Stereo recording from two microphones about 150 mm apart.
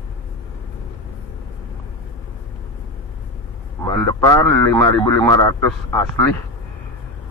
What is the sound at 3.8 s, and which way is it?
Speech, 20° left (ahead or behind).